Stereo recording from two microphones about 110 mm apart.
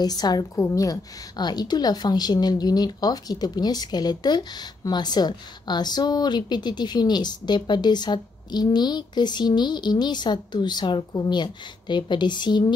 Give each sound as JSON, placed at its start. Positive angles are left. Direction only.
{"t": 0.0, "sound": "a woman's voice", "side_deg": 35}